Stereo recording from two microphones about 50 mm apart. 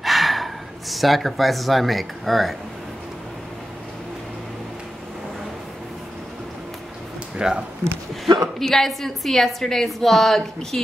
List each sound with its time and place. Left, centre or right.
0.0 s speech: centre
7.3 s speech: centre
8.5 s a woman's voice: centre